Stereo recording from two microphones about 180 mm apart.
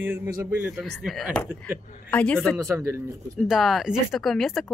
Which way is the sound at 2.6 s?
15° right (ahead or behind).